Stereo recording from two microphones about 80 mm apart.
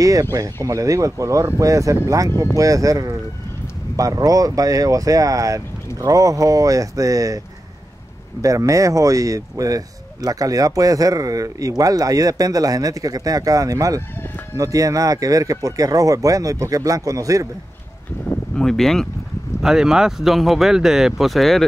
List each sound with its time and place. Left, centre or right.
0.0 s speech: right
18.6 s speech: centre
19.6 s speech: centre